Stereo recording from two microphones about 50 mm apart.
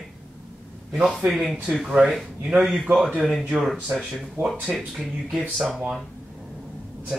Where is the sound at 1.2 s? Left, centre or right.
Centre.